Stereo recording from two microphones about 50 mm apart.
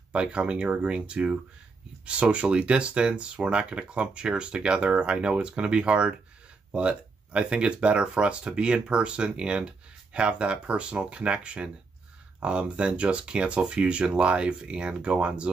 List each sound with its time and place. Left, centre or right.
0.1 s speech: right